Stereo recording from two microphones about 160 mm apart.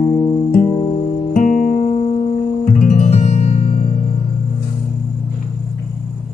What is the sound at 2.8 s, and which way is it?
Music, 45° left (ahead or behind).